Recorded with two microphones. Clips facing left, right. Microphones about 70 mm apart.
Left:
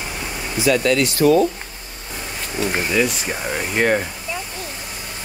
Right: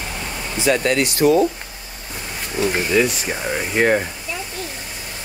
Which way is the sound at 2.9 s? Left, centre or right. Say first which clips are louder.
Right 2 dB; centre.